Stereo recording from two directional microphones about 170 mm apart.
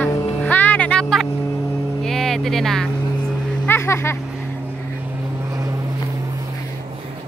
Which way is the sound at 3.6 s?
15° left (ahead or behind).